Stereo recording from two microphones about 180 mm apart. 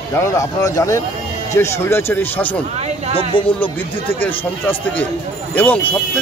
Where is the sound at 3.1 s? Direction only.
30° left (ahead or behind).